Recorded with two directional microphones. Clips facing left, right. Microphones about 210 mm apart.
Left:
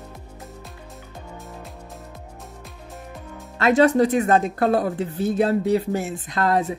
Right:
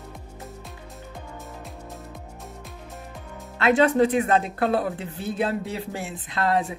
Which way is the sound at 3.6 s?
40° left (ahead or behind).